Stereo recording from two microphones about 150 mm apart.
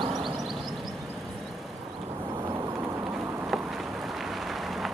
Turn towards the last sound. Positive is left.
turn(degrees=0)  # may be behind; listen again after turning